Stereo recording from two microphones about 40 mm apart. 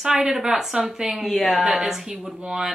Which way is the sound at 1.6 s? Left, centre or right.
Centre.